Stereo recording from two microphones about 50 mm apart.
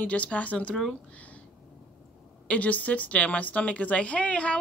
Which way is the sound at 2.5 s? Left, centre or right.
Left.